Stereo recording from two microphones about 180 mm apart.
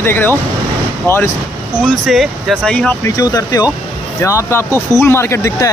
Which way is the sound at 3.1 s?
20° left (ahead or behind).